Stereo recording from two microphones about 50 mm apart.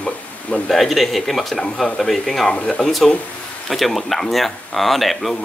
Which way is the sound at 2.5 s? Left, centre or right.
Left.